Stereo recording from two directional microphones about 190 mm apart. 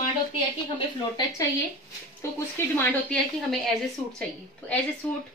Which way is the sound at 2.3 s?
10° left (ahead or behind).